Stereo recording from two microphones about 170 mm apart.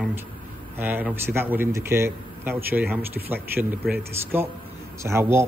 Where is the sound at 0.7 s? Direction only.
10° right (ahead or behind).